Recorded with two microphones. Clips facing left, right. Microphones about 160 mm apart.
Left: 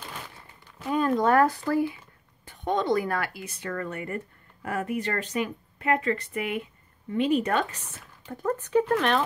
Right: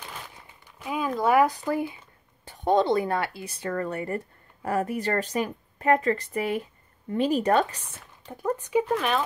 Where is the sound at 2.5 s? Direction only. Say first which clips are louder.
Right 4 dB; 30° right (ahead or behind).